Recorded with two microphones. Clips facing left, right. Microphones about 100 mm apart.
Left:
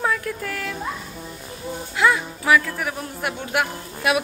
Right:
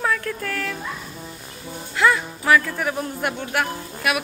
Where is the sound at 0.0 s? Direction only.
15° left (ahead or behind).